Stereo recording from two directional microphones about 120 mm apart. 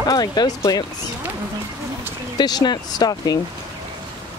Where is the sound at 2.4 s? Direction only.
35° left (ahead or behind).